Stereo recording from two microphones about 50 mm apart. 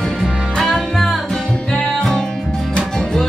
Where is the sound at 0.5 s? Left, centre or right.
Centre.